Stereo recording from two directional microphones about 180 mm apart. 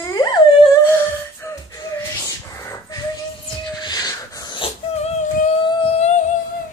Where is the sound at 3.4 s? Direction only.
25° left (ahead or behind); by 6.3 s 40° left (ahead or behind).